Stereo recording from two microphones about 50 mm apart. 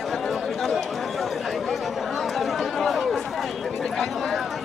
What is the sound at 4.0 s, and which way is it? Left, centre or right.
Clip-clop, centre.